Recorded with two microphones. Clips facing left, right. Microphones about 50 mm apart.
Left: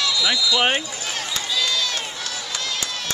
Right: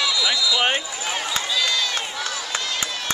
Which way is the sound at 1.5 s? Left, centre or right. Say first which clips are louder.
Left 1 dB; centre.